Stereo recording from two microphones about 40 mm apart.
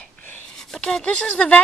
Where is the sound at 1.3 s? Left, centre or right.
Left.